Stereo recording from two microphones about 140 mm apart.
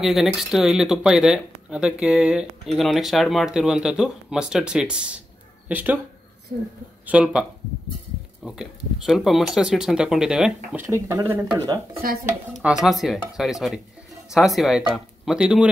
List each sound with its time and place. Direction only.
0.0 s speech: centre (ahead or behind)
7.1 s speech: 10° right (ahead or behind)
8.5 s speech: 5° right (ahead or behind)
10.8 s speech: 20° right (ahead or behind)
12.0 s speech: 90° right
12.6 s speech: centre (ahead or behind)